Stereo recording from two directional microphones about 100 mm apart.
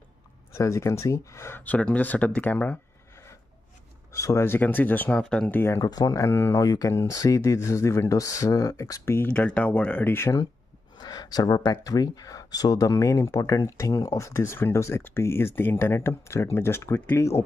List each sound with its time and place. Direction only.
0.5 s speech: 30° left (ahead or behind); by 2.8 s 15° left (ahead or behind)
4.1 s speech: 30° left (ahead or behind); by 5.6 s 10° left (ahead or behind)
5.8 s speech: 40° left (ahead or behind)
6.6 s speech: 35° left (ahead or behind)
9.3 s speech: 15° left (ahead or behind); by 10.5 s 30° left (ahead or behind)
11.0 s speech: 40° left (ahead or behind); by 17.4 s 25° left (ahead or behind)